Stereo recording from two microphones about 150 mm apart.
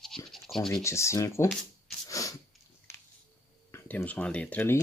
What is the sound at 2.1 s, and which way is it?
Sneeze, 20° left (ahead or behind).